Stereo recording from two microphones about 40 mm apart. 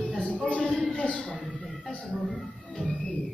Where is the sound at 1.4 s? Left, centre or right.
Centre.